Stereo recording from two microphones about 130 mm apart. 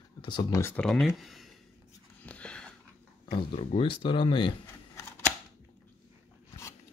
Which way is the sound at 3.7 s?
40° left (ahead or behind).